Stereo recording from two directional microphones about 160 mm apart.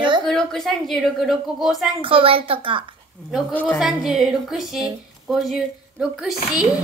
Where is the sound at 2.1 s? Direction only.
35° right (ahead or behind).